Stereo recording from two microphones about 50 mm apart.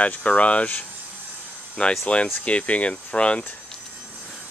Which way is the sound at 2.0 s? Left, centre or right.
Left.